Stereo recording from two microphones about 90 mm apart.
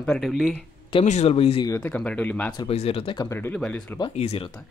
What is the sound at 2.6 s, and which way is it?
Speech, 90° left.